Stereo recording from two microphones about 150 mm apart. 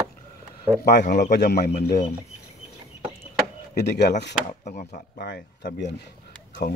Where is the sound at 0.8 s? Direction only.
60° left (ahead or behind); by 2.0 s 90° left.